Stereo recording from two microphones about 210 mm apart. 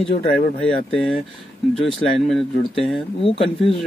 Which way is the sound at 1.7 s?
Centre (ahead or behind).